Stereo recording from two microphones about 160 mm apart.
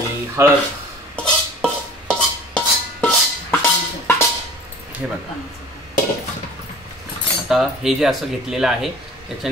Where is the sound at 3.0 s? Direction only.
10° left (ahead or behind).